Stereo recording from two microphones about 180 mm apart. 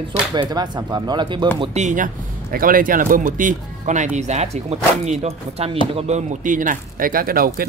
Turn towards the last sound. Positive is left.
turn(degrees=-55)  # may be behind; listen again after turning